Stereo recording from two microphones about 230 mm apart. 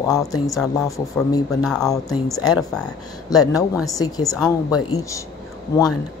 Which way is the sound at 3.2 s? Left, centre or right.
Centre.